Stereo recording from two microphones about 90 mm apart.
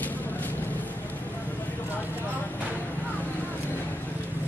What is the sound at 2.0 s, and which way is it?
Vehicle, 20° left (ahead or behind).